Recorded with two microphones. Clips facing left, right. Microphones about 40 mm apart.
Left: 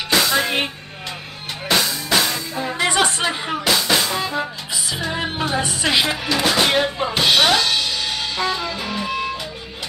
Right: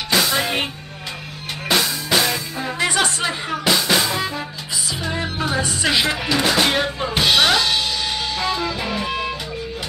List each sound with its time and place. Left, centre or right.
0.1 s music: centre
1.7 s music: centre
2.9 s music: left
3.8 s music: centre
5.1 s music: left
5.6 s speech: left
5.9 s music: centre
6.2 s music: centre